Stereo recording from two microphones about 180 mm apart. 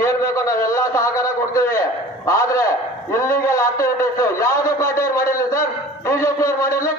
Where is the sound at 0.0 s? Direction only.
15° left (ahead or behind).